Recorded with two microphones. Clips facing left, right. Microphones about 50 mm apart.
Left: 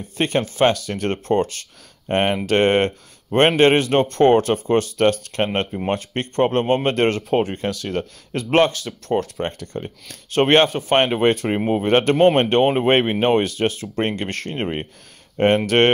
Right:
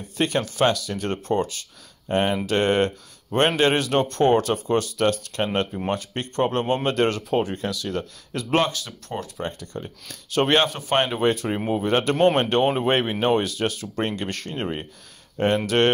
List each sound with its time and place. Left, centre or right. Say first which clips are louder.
0.0 s speech: left 3 dB; left